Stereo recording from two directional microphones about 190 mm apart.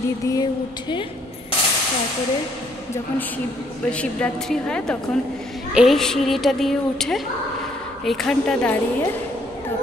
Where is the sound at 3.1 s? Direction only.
10° left (ahead or behind).